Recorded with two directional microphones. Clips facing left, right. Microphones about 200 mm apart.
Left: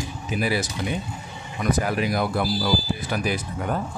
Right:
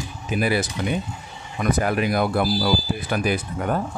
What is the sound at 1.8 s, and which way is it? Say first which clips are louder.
Speech: right 5 dB; 55° right (ahead or behind).